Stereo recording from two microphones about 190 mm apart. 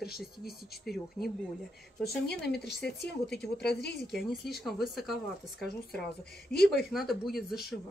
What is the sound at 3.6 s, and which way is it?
Speech, 60° left (ahead or behind).